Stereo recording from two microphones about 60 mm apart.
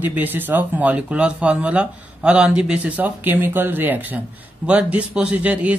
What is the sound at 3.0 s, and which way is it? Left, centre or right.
A man's voice, right.